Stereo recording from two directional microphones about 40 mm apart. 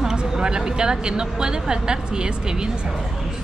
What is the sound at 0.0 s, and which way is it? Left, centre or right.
A woman's voice, centre.